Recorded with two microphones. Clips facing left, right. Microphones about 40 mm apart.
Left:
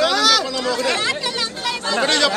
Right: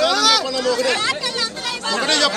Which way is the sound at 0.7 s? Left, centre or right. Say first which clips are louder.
Even; centre.